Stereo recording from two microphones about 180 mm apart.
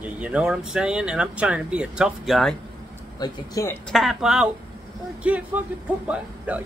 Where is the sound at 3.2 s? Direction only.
20° left (ahead or behind).